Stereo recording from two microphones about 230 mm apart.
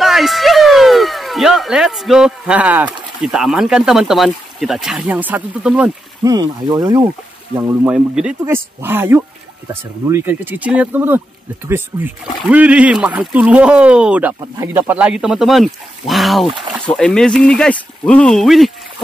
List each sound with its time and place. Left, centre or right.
0.0 s speech: centre
6.2 s speech: centre